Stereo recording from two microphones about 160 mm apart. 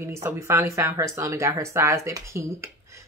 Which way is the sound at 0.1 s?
15° right (ahead or behind).